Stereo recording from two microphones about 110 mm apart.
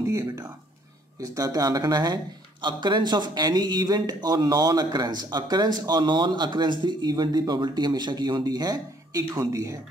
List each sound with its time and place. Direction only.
1.2 s speech: 30° right (ahead or behind)